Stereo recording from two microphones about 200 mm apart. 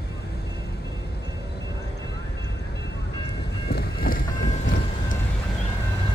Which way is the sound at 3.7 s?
50° left (ahead or behind).